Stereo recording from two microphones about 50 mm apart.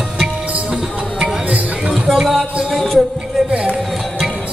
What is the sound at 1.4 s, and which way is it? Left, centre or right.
Music, right.